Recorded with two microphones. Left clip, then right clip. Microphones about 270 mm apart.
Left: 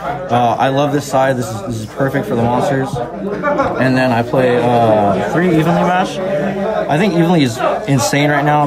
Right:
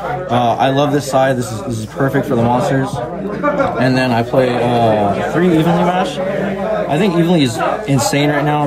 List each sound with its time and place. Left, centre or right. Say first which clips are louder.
0.3 s a man's voice: left 1 dB; centre
3.8 s a man's voice: left 1 dB; centre